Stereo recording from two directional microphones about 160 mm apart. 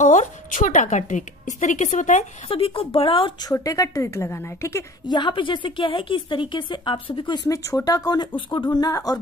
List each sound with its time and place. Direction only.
0.0 s a woman's voice: 50° left (ahead or behind)
2.5 s a woman's voice: 35° left (ahead or behind)
3.5 s a woman's voice: 20° left (ahead or behind)
5.1 s a woman's voice: 30° left (ahead or behind)